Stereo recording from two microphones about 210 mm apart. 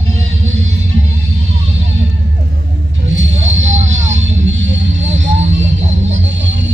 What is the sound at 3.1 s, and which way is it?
Music, 65° right (ahead or behind).